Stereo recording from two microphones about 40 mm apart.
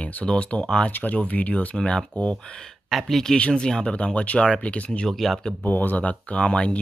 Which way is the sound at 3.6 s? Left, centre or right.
Left.